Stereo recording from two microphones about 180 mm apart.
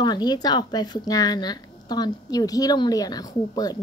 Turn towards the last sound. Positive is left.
turn(degrees=20)  # may be behind; listen again after turning